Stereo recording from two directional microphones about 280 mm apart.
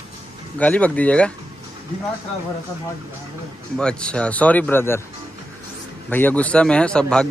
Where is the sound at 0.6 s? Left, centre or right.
Centre.